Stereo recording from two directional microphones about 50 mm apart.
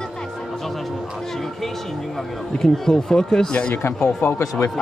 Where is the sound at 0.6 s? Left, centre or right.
Centre.